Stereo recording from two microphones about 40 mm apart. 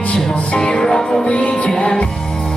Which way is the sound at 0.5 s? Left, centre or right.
Left.